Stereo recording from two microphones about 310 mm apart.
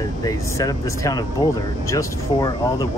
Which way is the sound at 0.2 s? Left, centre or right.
Centre.